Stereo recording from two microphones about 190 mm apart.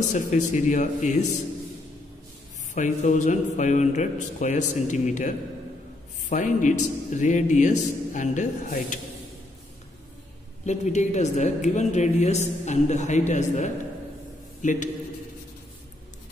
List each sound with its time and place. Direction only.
0.1 s a woman's voice: 40° left (ahead or behind)
2.7 s a woman's voice: 40° left (ahead or behind)
10.6 s a woman's voice: 35° left (ahead or behind)